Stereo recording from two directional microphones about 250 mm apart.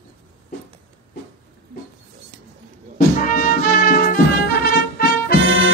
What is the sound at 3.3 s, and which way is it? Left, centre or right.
Music, left.